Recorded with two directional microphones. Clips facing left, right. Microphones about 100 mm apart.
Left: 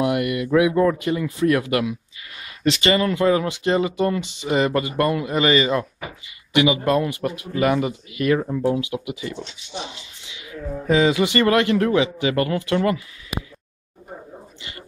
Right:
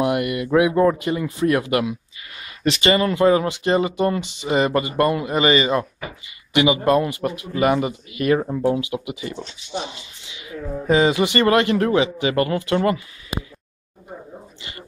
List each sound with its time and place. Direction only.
0.2 s speech: 15° right (ahead or behind)
2.6 s speech: 10° right (ahead or behind)
2.9 s speech: 20° right (ahead or behind)
10.9 s speech: 35° right (ahead or behind)